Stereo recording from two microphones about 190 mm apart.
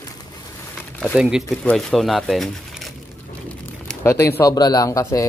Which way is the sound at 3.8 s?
15° left (ahead or behind).